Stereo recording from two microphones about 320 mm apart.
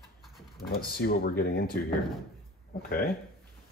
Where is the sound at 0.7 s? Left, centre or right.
Left.